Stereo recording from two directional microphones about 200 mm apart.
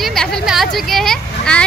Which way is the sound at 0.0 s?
Centre (ahead or behind).